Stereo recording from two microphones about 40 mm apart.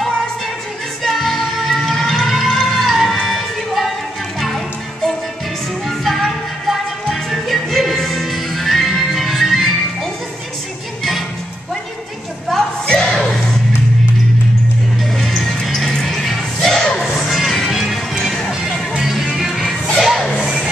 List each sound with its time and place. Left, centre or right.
1.0 s music: centre
5.9 s music: centre
12.8 s music: left
13.1 s music: centre
15.0 s music: centre